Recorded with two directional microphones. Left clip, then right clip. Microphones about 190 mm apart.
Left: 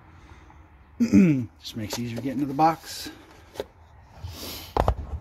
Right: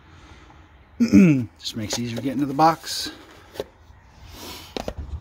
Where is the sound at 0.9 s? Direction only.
5° right (ahead or behind).